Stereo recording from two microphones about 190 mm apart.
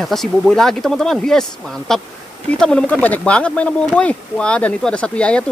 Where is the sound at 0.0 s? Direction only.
Centre (ahead or behind).